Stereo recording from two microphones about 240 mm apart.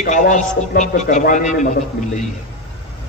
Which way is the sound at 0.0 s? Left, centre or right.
Left.